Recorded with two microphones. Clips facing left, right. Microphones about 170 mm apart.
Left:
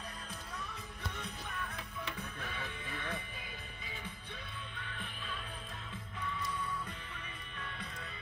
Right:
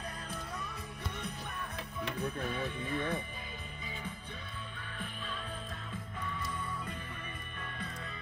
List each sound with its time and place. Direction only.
2.4 s speech: 50° right (ahead or behind)